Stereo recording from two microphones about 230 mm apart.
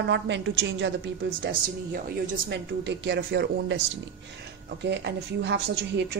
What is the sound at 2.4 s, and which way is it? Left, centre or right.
A woman's voice, right.